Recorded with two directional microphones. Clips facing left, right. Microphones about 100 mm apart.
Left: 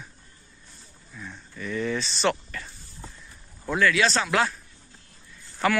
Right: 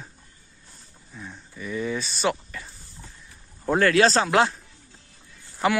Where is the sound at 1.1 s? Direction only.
15° right (ahead or behind).